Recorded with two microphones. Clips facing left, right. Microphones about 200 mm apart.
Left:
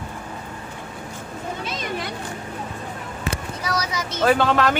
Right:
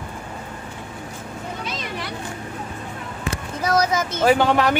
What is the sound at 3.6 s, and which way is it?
Speech, 50° right (ahead or behind).